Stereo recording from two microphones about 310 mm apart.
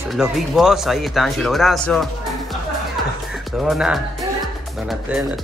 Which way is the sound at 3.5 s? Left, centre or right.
Centre.